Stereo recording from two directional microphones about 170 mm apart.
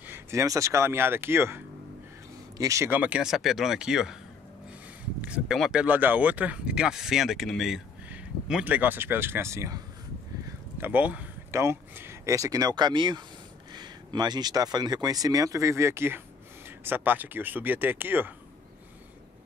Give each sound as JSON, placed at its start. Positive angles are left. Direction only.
{"t": 0.0, "sound": "speech", "side_deg": -15}
{"t": 5.2, "sound": "speech", "side_deg": -5}
{"t": 10.8, "sound": "speech", "side_deg": -10}